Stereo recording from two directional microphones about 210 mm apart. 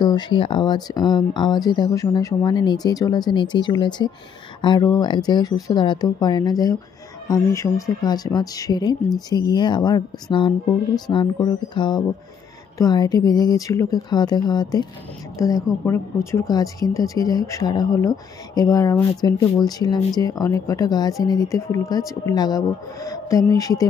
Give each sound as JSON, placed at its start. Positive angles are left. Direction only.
{"t": 0.0, "sound": "speech", "side_deg": 20}
{"t": 11.1, "sound": "speech", "side_deg": 20}